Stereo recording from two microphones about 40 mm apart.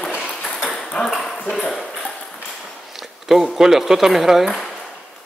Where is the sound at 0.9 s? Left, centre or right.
Left.